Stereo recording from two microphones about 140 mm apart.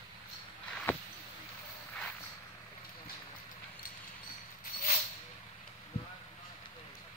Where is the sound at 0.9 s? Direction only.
15° left (ahead or behind).